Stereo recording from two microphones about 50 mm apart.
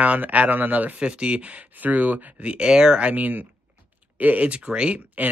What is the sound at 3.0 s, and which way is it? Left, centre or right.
Speech, right.